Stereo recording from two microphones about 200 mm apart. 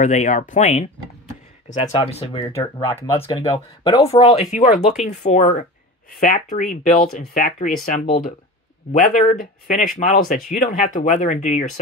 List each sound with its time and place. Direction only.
0.0 s speech: 35° left (ahead or behind)
2.5 s speech: 15° left (ahead or behind); by 11.8 s 40° left (ahead or behind)